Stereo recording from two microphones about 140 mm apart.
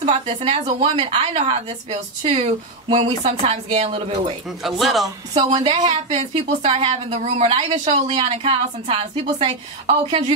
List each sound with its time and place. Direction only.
0.0 s a woman's voice: 40° right (ahead or behind)
4.6 s speech: centre (ahead or behind)
5.6 s a woman's voice: 45° right (ahead or behind)